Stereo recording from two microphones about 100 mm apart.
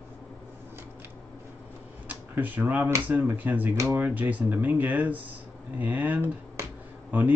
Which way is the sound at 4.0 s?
15° right (ahead or behind).